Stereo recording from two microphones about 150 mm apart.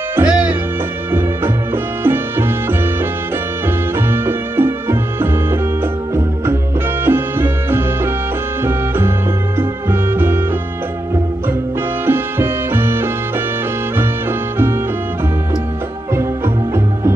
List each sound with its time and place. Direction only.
0.1 s music: 10° right (ahead or behind)
2.0 s music: 15° right (ahead or behind)
3.9 s music: 15° right (ahead or behind)
12.1 s music: 15° right (ahead or behind)